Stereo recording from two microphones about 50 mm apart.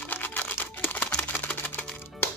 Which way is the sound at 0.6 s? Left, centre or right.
Left.